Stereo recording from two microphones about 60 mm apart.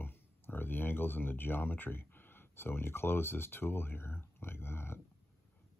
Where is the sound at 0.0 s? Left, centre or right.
Left.